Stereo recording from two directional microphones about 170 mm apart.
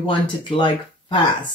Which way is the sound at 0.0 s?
30° left (ahead or behind).